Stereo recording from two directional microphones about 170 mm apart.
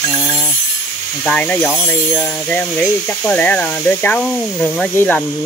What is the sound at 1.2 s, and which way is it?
Speech, 5° left (ahead or behind).